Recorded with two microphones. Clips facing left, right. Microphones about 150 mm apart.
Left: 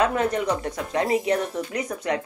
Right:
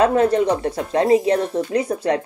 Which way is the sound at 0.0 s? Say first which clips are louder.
Right 7 dB; 30° right (ahead or behind).